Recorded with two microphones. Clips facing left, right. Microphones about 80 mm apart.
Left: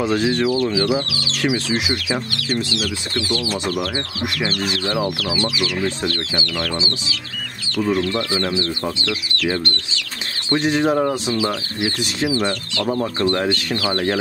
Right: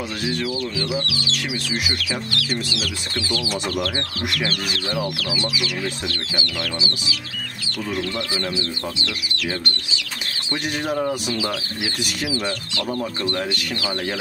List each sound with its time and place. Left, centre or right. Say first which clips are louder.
0.0 s speech: left 7 dB; left
3.6 s speech: left 2 dB; centre
5.3 s speech: left 4 dB; left
10.5 s speech: left 7 dB; left
12.8 s speech: left 6 dB; left
13.3 s speech: left 5 dB; left